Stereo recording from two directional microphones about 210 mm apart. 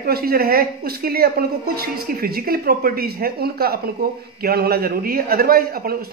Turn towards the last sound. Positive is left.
turn(degrees=-45)  # may be behind; listen again after turning